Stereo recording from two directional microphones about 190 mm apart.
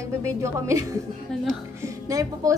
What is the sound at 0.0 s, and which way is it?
A woman's voice, 15° right (ahead or behind).